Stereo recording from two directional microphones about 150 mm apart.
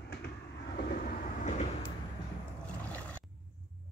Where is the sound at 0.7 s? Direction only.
80° left; by 1.7 s 55° left (ahead or behind).